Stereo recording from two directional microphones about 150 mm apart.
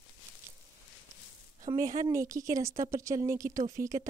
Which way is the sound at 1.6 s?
25° right (ahead or behind).